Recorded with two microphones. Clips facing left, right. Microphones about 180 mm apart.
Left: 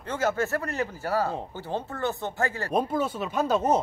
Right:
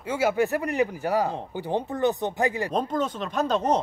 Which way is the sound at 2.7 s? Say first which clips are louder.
Even; 10° left (ahead or behind).